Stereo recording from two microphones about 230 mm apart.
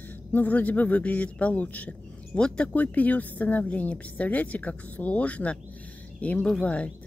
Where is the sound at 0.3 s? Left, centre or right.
Centre.